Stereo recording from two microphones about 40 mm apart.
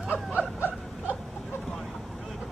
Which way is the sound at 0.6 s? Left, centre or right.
Right.